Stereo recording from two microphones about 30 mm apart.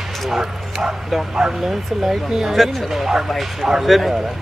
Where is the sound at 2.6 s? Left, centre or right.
Centre.